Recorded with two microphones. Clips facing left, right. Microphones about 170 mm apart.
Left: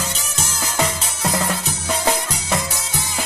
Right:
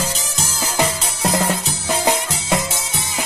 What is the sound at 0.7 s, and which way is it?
Music, 20° right (ahead or behind).